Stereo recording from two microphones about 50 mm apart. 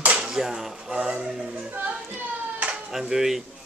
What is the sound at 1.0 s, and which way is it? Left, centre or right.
Speech, centre.